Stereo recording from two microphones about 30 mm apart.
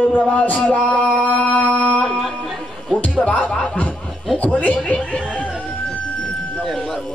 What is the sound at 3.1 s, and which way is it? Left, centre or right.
Speech, left.